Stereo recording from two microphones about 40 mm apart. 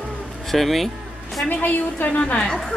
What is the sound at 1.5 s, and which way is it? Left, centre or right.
Speech, left.